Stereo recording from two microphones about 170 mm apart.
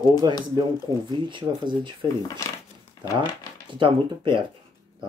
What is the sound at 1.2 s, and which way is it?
Speech, 30° right (ahead or behind).